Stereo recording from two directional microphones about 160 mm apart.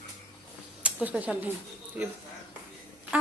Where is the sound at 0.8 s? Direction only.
10° right (ahead or behind).